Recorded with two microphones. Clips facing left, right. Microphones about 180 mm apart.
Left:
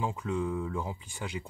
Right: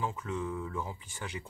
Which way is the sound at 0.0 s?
15° left (ahead or behind).